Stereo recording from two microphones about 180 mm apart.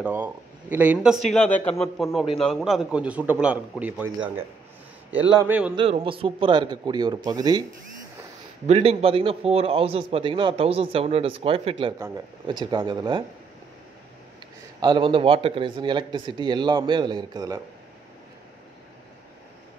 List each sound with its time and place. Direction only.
0.0 s speech: 10° right (ahead or behind)
1.2 s a man's voice: 5° left (ahead or behind)
5.1 s speech: 10° right (ahead or behind)
5.8 s speech: 30° right (ahead or behind)
8.6 s a man's voice: 35° right (ahead or behind)
14.8 s speech: 25° right (ahead or behind)